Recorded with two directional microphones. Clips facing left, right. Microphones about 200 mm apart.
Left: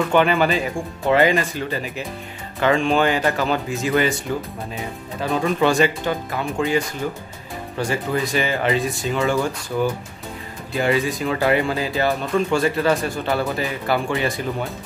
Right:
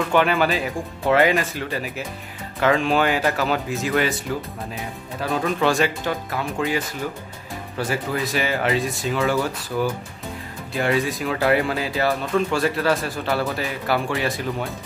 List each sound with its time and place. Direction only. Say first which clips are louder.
0.1 s speech: left 1 dB; centre (ahead or behind)
5.2 s speech: left 2 dB; centre (ahead or behind)
7.9 s speech: left 2 dB; centre (ahead or behind)